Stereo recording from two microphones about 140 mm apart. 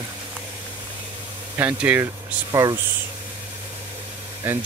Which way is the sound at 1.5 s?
10° right (ahead or behind).